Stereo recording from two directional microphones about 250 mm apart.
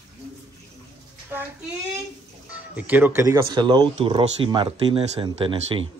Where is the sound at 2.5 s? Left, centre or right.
Centre.